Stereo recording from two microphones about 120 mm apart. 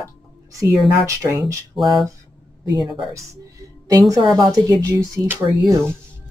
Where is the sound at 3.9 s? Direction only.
30° right (ahead or behind).